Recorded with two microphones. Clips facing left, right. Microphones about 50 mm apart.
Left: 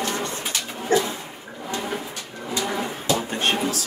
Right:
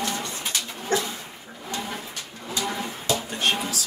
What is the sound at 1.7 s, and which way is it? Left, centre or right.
Bird, left.